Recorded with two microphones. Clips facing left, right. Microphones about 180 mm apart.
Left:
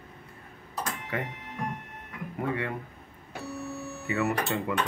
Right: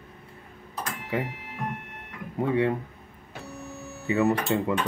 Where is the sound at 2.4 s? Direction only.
25° right (ahead or behind).